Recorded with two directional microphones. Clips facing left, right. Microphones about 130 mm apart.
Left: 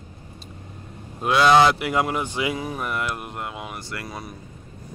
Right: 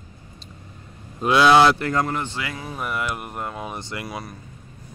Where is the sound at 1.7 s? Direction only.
10° left (ahead or behind).